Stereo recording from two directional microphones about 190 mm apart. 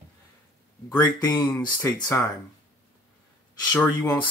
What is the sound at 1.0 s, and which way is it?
Speech, 20° left (ahead or behind).